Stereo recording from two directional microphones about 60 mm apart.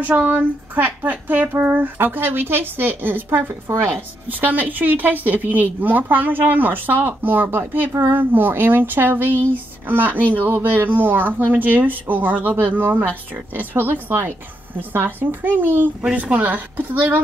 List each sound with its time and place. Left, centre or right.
0.0 s speech: right
4.3 s speech: right
16.0 s a woman's voice: centre